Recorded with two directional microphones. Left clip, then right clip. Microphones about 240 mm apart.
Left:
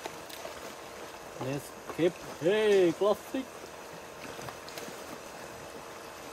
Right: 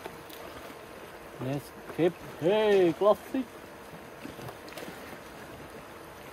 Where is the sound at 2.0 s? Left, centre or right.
Centre.